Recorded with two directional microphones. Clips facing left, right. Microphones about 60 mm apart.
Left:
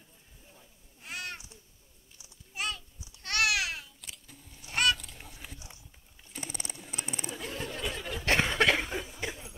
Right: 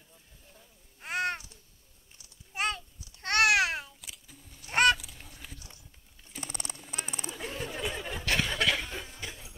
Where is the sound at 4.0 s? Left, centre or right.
Centre.